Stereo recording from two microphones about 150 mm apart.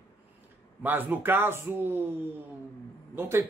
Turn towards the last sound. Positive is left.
turn(degrees=-15)  # may be behind; listen again after turning